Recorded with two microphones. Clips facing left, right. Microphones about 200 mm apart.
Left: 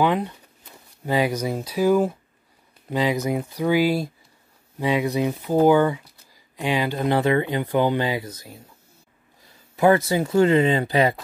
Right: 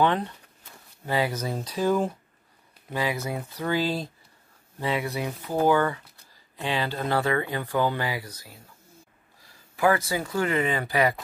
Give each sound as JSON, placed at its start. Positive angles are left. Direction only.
{"t": 0.0, "sound": "speech", "side_deg": 10}
{"t": 9.8, "sound": "speech", "side_deg": 25}